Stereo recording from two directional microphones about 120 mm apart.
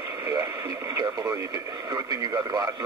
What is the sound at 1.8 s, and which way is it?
Speech, 30° right (ahead or behind).